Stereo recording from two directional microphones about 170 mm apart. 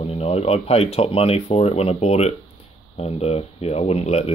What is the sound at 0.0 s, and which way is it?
Speech, 35° left (ahead or behind).